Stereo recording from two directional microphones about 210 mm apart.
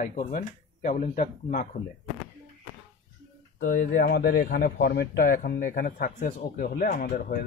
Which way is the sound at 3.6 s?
35° left (ahead or behind).